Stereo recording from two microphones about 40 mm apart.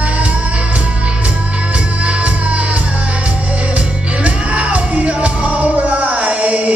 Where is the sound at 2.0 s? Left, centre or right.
Right.